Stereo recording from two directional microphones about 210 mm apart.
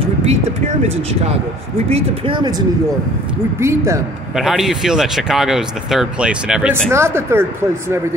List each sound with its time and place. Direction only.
0.3 s speech: 30° right (ahead or behind)
3.5 s speech: 15° right (ahead or behind)
4.4 s speech: centre (ahead or behind)